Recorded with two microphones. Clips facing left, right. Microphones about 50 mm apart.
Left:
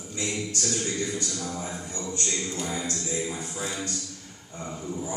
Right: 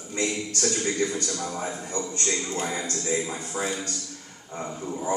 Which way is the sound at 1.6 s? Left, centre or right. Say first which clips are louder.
Right 4 dB; right.